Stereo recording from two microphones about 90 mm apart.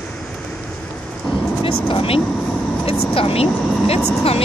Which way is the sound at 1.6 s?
80° left.